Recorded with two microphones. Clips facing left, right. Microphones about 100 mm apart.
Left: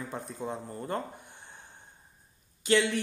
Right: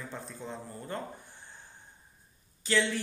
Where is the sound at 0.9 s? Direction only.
20° left (ahead or behind).